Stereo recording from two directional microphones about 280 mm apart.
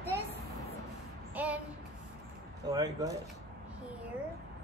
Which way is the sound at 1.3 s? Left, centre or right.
Centre.